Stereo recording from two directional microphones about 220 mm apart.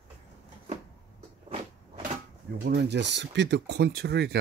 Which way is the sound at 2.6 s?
50° right (ahead or behind).